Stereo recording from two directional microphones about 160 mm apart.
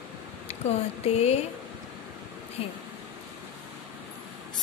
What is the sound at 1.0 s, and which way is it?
Speech, 40° left (ahead or behind).